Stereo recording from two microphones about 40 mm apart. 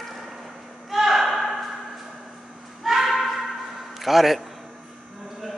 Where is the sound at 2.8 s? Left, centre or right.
Centre.